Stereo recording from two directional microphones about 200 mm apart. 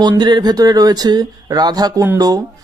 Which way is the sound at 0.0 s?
20° right (ahead or behind).